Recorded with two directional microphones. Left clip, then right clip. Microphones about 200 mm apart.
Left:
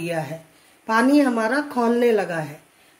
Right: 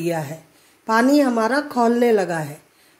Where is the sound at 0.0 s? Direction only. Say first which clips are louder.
Right 2 dB; 30° right (ahead or behind).